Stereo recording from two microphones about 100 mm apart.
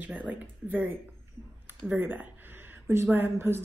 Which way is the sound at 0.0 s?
15° right (ahead or behind).